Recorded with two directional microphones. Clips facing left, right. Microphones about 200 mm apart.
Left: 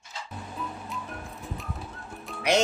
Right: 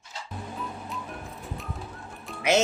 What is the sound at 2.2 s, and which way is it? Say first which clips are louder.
Music: right 1 dB; 5° right (ahead or behind).